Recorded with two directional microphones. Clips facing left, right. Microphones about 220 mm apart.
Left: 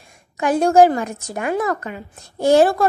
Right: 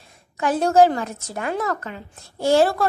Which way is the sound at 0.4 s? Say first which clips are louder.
Left 3 dB; 15° left (ahead or behind).